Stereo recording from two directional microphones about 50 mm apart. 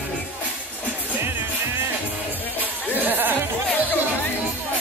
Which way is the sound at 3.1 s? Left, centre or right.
Right.